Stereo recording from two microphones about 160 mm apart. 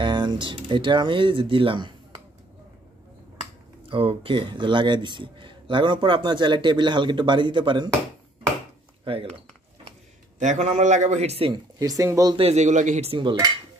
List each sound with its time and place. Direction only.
0.0 s speech: 30° right (ahead or behind)
3.9 s a man's voice: 35° right (ahead or behind)
9.0 s speech: 35° right (ahead or behind)
10.4 s a man's voice: 45° right (ahead or behind)
12.0 s a man's voice: 20° right (ahead or behind)
12.4 s cutlery: 40° right (ahead or behind)